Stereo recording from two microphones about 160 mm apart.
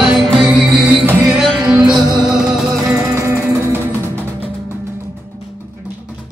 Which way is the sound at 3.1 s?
15° right (ahead or behind).